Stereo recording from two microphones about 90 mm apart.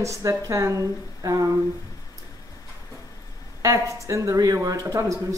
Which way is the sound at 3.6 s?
35° right (ahead or behind).